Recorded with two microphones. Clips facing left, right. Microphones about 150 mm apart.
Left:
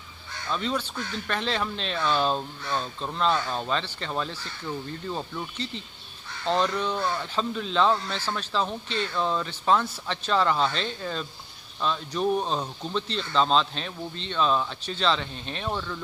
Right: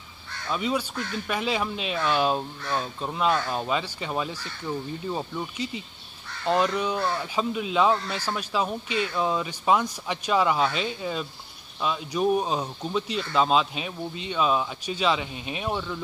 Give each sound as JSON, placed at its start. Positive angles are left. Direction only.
{"t": 0.5, "sound": "speech", "side_deg": -10}